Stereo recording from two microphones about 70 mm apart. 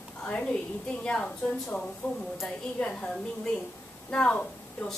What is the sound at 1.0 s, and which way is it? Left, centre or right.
A woman's voice, centre.